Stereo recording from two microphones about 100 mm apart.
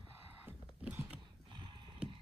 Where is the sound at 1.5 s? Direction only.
55° right (ahead or behind).